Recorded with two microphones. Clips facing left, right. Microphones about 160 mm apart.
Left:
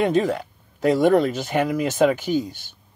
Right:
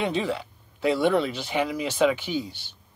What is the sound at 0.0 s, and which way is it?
Speech, 45° left (ahead or behind).